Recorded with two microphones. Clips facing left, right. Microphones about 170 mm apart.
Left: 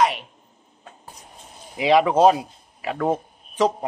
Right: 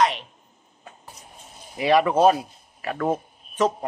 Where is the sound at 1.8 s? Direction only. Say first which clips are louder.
Left 2 dB; 15° left (ahead or behind).